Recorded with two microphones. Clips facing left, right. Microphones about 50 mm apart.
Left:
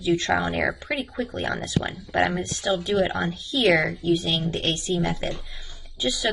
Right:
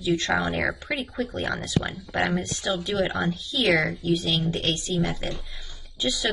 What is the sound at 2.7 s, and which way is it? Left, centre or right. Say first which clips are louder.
Speech: left 4 dB; centre.